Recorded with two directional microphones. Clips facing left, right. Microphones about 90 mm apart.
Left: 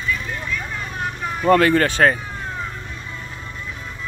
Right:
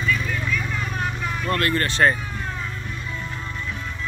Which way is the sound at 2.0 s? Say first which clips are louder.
Left 1 dB; 65° left (ahead or behind).